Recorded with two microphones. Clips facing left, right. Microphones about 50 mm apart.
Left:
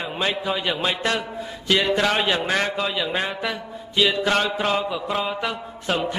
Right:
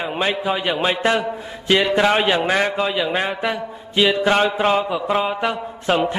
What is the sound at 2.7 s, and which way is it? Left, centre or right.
Mantra, centre.